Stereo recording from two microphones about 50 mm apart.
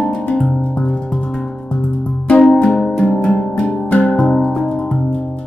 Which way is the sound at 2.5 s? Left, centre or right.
Centre.